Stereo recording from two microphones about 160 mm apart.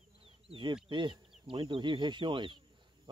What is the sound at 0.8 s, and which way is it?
Speech, 30° right (ahead or behind).